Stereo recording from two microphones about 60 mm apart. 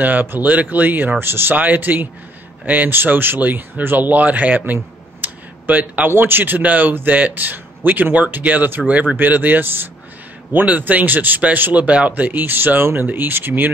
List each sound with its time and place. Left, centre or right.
0.0 s speech: right